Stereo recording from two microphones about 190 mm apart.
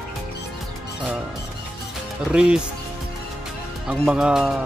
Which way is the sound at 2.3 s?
5° right (ahead or behind).